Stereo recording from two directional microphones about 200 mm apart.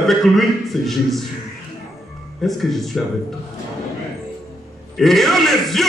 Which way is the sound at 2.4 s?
Centre (ahead or behind).